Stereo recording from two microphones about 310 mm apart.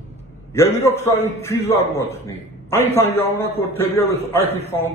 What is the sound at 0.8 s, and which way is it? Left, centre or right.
A man's voice, centre.